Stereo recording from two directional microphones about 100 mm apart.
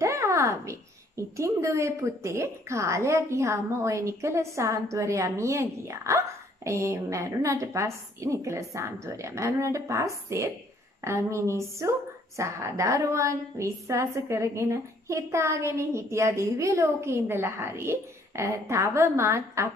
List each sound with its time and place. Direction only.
0.0 s a woman's voice: 30° right (ahead or behind)